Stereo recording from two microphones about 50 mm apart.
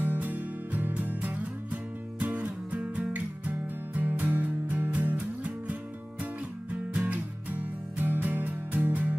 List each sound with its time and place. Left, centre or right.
0.0 s music: right
4.9 s music: right